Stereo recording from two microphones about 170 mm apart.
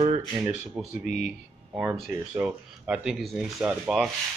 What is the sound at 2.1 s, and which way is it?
Speech, 5° right (ahead or behind).